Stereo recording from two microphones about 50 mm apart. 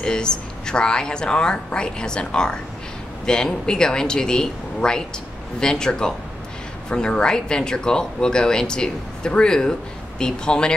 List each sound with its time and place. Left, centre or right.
0.0 s speech: centre